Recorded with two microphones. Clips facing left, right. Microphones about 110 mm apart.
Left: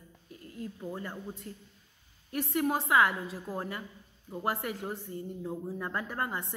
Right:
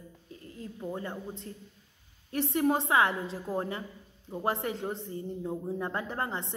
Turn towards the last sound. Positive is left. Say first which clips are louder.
# right 1 dB
turn(degrees=-25)  # may be behind; listen again after turning